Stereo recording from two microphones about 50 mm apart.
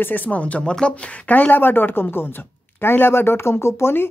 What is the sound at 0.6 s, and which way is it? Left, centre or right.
Speech, centre.